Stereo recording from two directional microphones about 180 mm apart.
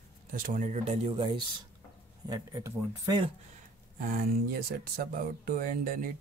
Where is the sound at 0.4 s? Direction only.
45° right (ahead or behind).